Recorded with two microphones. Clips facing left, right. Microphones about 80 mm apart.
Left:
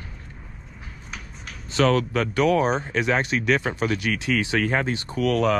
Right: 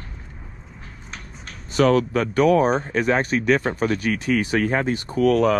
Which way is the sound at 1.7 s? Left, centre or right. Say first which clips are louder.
Right 3 dB; right.